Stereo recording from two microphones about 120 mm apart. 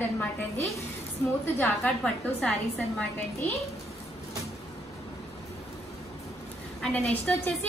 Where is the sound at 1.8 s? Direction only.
5° left (ahead or behind).